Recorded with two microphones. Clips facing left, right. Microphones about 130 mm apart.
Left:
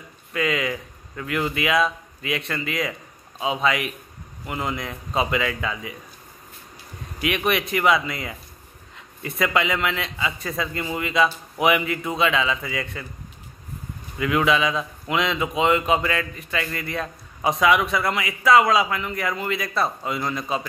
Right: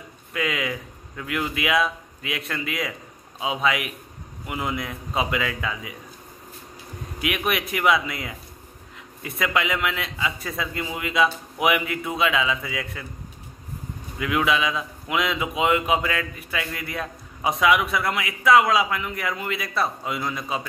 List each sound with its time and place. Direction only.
0.3 s a man's voice: 5° right (ahead or behind)
7.2 s a man's voice: 5° right (ahead or behind)
14.1 s a man's voice: 5° right (ahead or behind)